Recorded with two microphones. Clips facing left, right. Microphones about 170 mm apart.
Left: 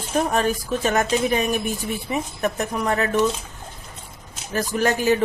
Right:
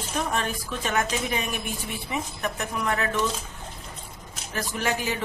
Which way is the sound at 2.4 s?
40° left (ahead or behind).